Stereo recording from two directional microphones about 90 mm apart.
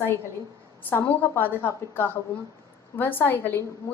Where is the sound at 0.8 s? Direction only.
20° left (ahead or behind).